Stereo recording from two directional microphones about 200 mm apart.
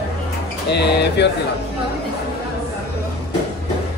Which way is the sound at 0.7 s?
55° left (ahead or behind).